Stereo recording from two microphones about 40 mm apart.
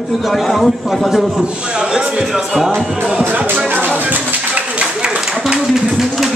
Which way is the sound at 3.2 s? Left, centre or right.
Right.